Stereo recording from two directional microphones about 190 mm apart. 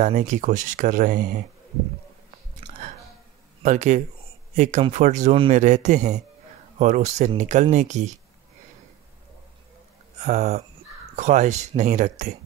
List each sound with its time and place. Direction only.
0.0 s speech: 40° right (ahead or behind)
3.6 s speech: 40° right (ahead or behind)
10.2 s speech: 35° right (ahead or behind)